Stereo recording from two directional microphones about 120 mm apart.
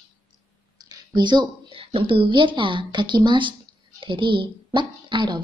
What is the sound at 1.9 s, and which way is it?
A woman's voice, 45° right (ahead or behind).